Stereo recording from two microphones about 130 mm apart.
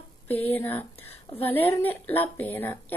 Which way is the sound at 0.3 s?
15° left (ahead or behind).